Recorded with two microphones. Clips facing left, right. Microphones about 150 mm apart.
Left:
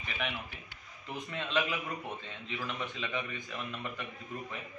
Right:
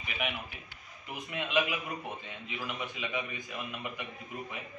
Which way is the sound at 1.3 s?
10° right (ahead or behind).